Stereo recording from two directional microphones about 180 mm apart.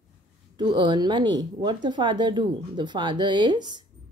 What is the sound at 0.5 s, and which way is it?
Speech, 25° right (ahead or behind).